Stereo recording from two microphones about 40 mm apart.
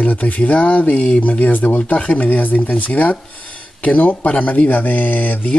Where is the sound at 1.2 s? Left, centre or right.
Left.